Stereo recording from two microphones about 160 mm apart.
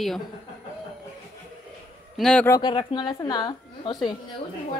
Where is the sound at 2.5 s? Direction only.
30° left (ahead or behind).